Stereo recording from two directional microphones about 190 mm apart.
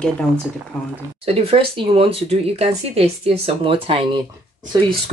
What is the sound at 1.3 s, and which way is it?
Speech, 30° right (ahead or behind).